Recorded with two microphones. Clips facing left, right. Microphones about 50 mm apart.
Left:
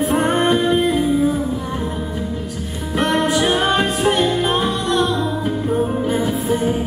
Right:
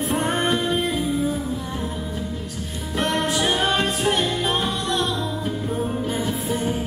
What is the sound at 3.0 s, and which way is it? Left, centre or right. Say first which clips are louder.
Music: left 5 dB; centre.